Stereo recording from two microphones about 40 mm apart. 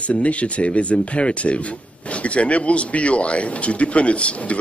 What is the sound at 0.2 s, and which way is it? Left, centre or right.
Speech, left.